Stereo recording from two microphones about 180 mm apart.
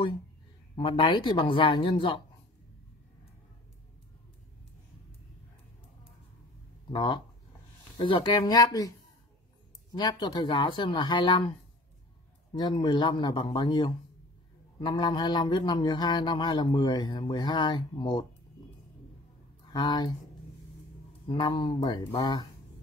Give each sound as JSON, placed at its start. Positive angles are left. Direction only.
{"t": 0.7, "sound": "a man's voice", "side_deg": 25}
{"t": 6.9, "sound": "a man's voice", "side_deg": 25}
{"t": 9.9, "sound": "a man's voice", "side_deg": 25}
{"t": 12.5, "sound": "a man's voice", "side_deg": 25}
{"t": 19.7, "sound": "a man's voice", "side_deg": 25}
{"t": 21.3, "sound": "a man's voice", "side_deg": 25}